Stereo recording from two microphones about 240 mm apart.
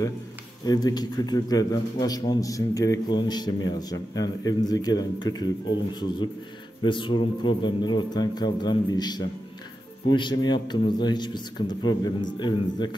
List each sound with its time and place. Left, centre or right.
0.7 s a man's voice: centre
6.8 s a man's voice: centre